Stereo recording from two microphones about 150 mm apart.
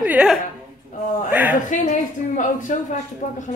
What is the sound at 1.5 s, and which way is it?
Speech, 55° left (ahead or behind).